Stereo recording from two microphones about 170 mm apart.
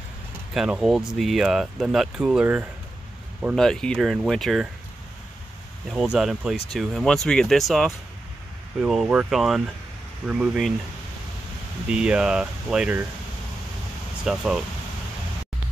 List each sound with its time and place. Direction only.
0.6 s speech: 5° right (ahead or behind)
3.5 s speech: 5° left (ahead or behind)
6.1 s speech: 5° right (ahead or behind)
11.9 s speech: 5° right (ahead or behind)
14.2 s speech: 5° right (ahead or behind)